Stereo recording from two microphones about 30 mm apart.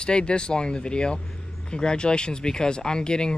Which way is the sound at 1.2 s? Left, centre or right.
Centre.